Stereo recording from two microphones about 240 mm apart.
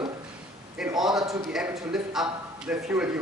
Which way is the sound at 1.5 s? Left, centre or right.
Centre.